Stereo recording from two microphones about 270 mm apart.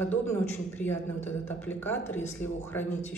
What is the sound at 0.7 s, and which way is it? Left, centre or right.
Speech, centre.